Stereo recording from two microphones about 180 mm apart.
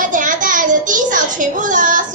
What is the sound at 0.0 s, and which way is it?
A child's voice, 45° right (ahead or behind).